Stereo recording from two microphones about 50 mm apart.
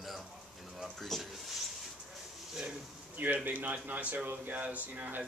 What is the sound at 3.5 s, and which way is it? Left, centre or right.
Speech, right.